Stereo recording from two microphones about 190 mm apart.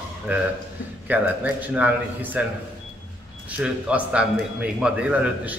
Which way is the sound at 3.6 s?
5° right (ahead or behind).